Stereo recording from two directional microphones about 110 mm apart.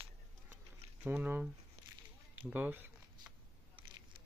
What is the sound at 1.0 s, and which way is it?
Speech, 15° right (ahead or behind).